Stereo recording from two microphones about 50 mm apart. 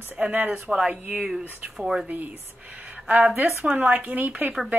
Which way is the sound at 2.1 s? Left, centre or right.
Right.